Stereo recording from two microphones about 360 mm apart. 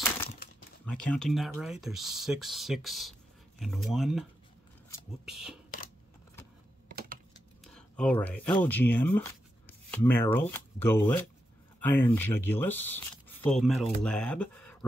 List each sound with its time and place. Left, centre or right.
0.8 s speech: centre
6.9 s typing: right
7.6 s speech: centre